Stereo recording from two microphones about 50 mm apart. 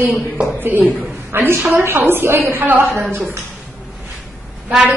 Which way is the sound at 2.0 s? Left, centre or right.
Right.